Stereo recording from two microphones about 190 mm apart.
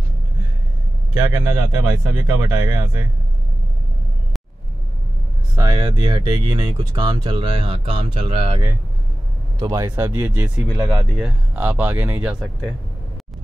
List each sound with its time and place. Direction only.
1.1 s speech: 15° right (ahead or behind)
5.6 s speech: 20° right (ahead or behind)
9.6 s speech: 15° right (ahead or behind)